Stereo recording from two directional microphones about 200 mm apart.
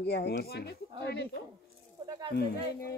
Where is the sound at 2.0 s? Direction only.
20° right (ahead or behind).